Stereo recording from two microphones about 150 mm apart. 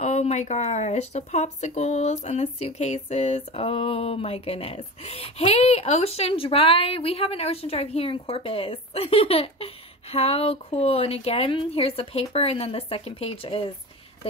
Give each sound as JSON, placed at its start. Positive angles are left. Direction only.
{"t": 0.0, "sound": "speech", "side_deg": 45}